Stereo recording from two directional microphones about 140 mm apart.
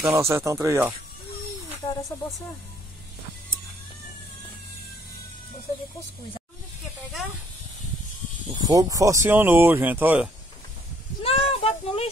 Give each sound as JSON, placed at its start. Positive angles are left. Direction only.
{"t": 0.0, "sound": "speech", "side_deg": -20}
{"t": 1.9, "sound": "speech", "side_deg": 25}
{"t": 8.5, "sound": "speech", "side_deg": -25}
{"t": 11.2, "sound": "a sound", "side_deg": 45}